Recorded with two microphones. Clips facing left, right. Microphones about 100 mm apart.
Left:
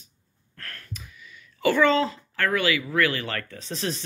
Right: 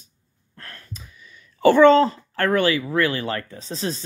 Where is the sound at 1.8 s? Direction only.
45° right (ahead or behind).